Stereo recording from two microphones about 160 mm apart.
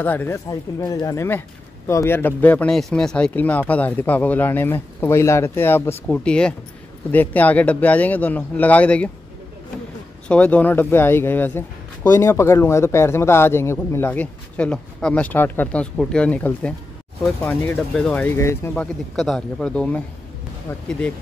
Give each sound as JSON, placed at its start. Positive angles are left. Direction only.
{"t": 0.0, "sound": "speech", "side_deg": 10}
{"t": 10.2, "sound": "speech", "side_deg": 10}
{"t": 17.7, "sound": "speech", "side_deg": 5}
{"t": 19.1, "sound": "speech", "side_deg": 0}